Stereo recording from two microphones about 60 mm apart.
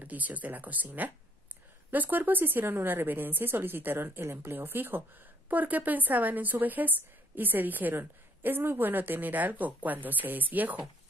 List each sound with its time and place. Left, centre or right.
0.0 s a woman's voice: right